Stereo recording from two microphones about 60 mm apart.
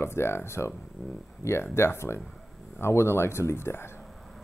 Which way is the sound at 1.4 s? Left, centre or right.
Left.